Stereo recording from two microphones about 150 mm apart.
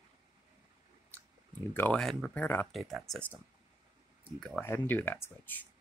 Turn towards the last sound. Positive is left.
turn(degrees=10)  # may be behind; listen again after turning